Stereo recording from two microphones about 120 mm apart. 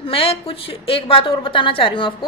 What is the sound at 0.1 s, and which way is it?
A woman's voice, 50° left (ahead or behind).